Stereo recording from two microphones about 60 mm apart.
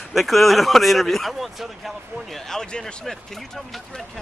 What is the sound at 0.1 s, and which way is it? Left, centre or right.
Speech, centre.